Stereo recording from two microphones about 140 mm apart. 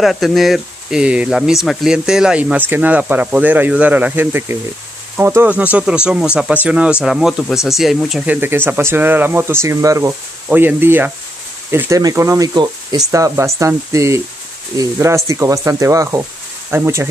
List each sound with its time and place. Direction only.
0.0 s speech: centre (ahead or behind)
8.4 s speech: 15° right (ahead or behind)